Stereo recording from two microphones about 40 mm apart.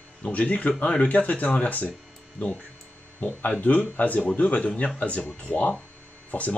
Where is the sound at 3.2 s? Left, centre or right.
Left.